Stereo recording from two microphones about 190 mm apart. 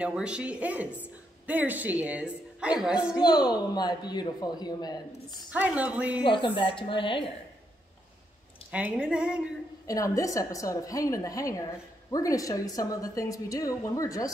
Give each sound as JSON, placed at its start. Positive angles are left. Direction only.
{"t": 0.0, "sound": "a woman's voice", "side_deg": -5}
{"t": 3.2, "sound": "a woman's voice", "side_deg": 20}
{"t": 5.5, "sound": "a woman's voice", "side_deg": -10}
{"t": 6.2, "sound": "a woman's voice", "side_deg": 25}
{"t": 8.7, "sound": "speech", "side_deg": -5}
{"t": 9.8, "sound": "a woman's voice", "side_deg": 15}